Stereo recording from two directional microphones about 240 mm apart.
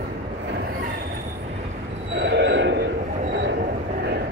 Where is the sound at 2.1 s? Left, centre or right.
Right.